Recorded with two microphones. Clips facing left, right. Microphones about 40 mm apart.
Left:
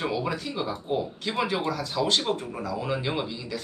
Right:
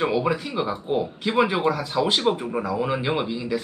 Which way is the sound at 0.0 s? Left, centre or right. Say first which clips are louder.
Right 6 dB; centre.